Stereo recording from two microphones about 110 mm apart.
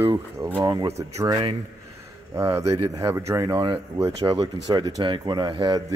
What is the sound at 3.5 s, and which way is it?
Speech, 45° right (ahead or behind).